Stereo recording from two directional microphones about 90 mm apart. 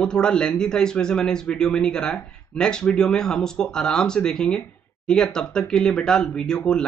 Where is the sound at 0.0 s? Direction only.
10° left (ahead or behind).